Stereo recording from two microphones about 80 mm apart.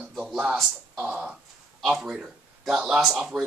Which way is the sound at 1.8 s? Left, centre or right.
Centre.